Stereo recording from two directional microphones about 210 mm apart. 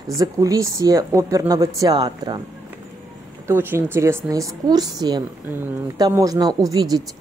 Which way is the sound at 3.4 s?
10° right (ahead or behind).